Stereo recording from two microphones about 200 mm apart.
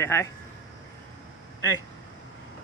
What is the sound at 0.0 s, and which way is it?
Speech, 15° left (ahead or behind).